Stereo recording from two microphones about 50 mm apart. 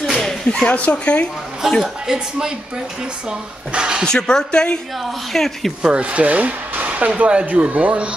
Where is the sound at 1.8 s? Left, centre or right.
Centre.